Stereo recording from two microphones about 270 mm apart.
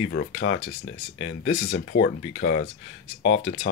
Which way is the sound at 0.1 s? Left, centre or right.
Left.